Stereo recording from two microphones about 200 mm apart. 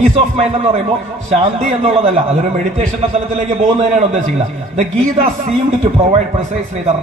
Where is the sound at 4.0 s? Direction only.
35° right (ahead or behind).